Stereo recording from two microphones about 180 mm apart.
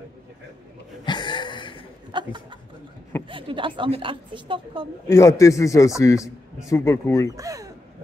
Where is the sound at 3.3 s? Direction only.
30° right (ahead or behind).